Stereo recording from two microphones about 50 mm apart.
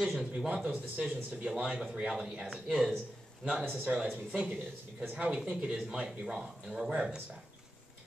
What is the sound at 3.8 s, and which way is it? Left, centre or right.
Speech, centre.